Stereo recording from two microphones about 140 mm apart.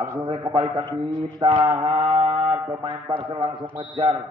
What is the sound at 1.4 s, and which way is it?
Speech, 35° right (ahead or behind).